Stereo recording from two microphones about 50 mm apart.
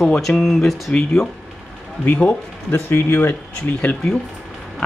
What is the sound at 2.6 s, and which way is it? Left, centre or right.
Speech, left.